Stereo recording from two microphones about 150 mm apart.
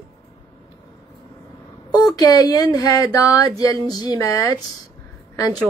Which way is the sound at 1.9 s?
25° left (ahead or behind).